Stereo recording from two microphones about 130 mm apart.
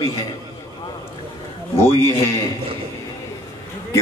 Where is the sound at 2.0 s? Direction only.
20° left (ahead or behind).